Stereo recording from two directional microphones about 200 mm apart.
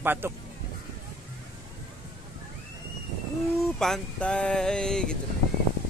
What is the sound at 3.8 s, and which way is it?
Speech, 5° left (ahead or behind).